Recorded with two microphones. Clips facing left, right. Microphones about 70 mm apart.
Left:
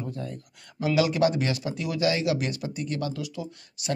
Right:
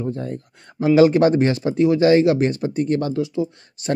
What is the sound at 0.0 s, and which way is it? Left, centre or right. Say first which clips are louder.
Speech: right 9 dB; right.